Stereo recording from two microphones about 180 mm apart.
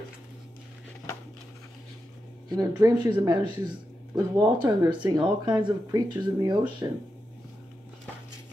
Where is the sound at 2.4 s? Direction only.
25° right (ahead or behind).